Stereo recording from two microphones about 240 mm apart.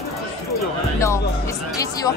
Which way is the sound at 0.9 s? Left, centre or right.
Centre.